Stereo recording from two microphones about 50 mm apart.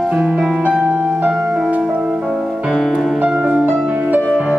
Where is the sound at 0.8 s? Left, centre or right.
Right.